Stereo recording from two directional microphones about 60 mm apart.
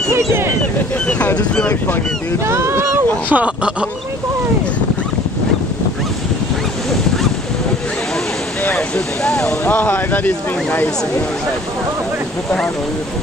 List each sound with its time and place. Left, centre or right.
0.1 s speech: right
1.0 s speech: left
2.4 s speech: right
3.3 s speech: right
8.7 s speech: centre
9.7 s speech: left